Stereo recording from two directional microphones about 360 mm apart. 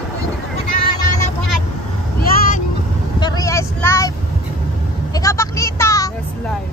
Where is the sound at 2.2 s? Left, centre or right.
Left.